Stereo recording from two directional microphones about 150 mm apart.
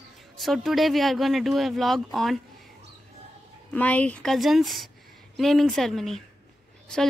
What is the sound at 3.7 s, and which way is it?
A woman's voice, 10° left (ahead or behind).